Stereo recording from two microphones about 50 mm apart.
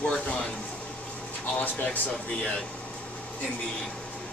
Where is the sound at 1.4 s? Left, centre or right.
Left.